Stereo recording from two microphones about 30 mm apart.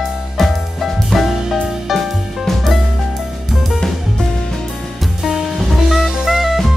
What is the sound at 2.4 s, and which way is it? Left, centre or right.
Music, centre.